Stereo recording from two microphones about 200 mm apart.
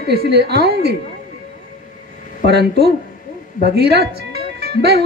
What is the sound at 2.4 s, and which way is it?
A woman's voice, 55° right (ahead or behind).